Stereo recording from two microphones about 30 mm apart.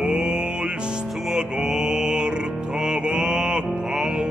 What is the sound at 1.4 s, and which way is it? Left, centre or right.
Music, right.